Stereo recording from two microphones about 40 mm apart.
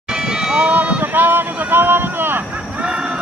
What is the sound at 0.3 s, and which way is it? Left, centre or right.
Run, centre.